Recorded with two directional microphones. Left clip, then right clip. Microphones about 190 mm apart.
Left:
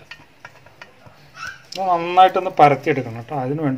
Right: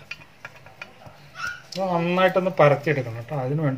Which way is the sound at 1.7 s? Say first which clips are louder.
Left 6 dB; 45° left (ahead or behind).